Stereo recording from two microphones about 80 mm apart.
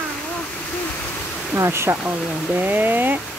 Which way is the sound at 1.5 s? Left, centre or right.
Right.